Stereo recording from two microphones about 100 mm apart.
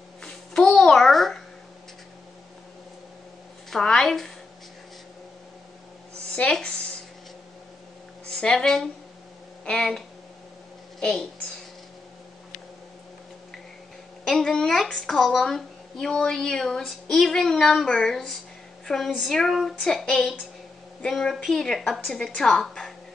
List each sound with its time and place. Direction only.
0.2 s babbling: 5° left (ahead or behind)
3.7 s a woman's voice: 5° left (ahead or behind)
6.3 s a woman's voice: 10° left (ahead or behind)
8.4 s a woman's voice: 5° left (ahead or behind)
14.2 s a woman's voice: 5° left (ahead or behind)